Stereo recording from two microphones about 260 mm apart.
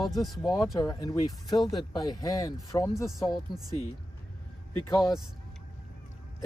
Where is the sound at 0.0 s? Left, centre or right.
Centre.